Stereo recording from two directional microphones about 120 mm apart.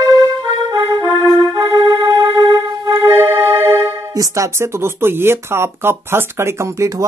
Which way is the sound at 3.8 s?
25° right (ahead or behind).